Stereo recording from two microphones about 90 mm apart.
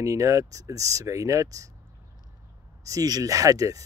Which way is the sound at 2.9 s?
40° right (ahead or behind).